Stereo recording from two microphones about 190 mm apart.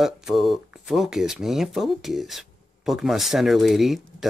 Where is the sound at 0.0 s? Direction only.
Centre (ahead or behind).